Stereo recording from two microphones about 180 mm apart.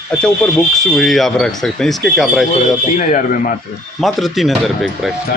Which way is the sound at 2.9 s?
45° left (ahead or behind).